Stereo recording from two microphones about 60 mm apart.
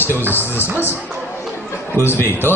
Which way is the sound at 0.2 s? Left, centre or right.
Right.